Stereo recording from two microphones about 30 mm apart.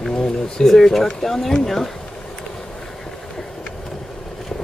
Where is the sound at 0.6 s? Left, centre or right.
Centre.